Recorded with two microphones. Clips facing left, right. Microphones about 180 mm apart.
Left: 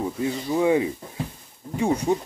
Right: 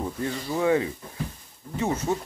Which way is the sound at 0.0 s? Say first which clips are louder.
Left 4 dB; 10° left (ahead or behind).